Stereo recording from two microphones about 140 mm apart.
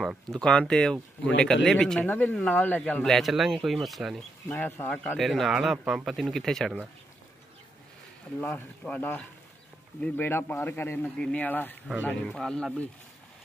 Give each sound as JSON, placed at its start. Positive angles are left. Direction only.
{"t": 0.0, "sound": "speech", "side_deg": 0}
{"t": 4.5, "sound": "speech", "side_deg": 15}
{"t": 5.2, "sound": "speech", "side_deg": 0}
{"t": 8.4, "sound": "speech", "side_deg": 10}